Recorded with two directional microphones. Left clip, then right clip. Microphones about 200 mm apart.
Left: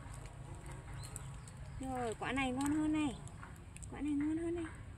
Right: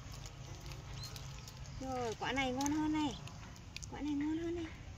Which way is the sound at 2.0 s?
15° left (ahead or behind).